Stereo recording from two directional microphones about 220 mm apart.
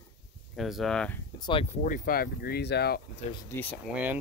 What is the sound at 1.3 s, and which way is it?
Speech, 20° left (ahead or behind).